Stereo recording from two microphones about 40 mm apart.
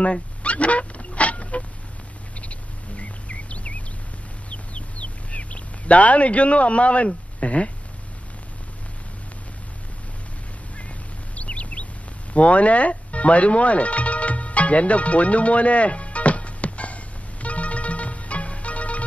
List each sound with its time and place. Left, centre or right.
0.4 s a sound: left
2.4 s rodents: left
4.5 s duck: left
7.3 s speech: left
11.3 s bird: left
12.4 s music: left